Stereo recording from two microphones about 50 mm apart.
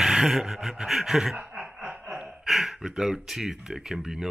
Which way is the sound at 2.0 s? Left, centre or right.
Centre.